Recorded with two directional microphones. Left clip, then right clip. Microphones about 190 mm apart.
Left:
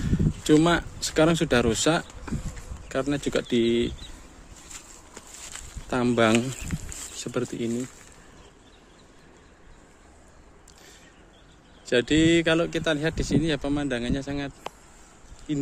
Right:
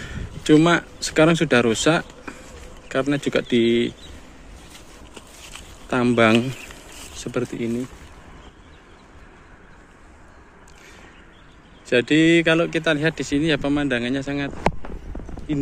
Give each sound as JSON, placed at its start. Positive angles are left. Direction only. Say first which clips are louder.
{"t": 0.0, "sound": "speech", "louder": "right 1 dB", "side_deg": 10}
{"t": 5.9, "sound": "speech", "louder": "right 5 dB", "side_deg": 10}
{"t": 11.8, "sound": "speech", "louder": "right 4 dB", "side_deg": 15}